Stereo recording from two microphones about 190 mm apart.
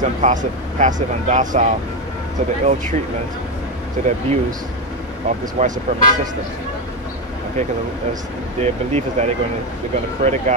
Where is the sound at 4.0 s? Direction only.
40° right (ahead or behind).